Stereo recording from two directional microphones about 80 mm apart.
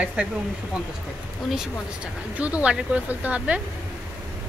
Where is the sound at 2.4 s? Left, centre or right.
Centre.